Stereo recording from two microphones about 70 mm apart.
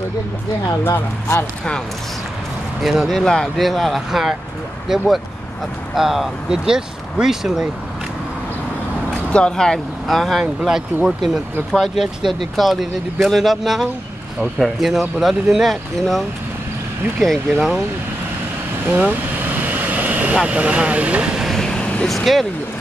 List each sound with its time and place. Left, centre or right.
0.8 s speech: left
2.8 s speech: centre
3.1 s speech: centre
9.3 s speech: centre
10.0 s speech: centre
18.9 s vehicle: right
20.3 s speech: centre
21.5 s vehicle: centre
22.0 s speech: centre